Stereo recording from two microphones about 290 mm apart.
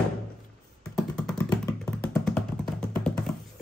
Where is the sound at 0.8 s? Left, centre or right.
Centre.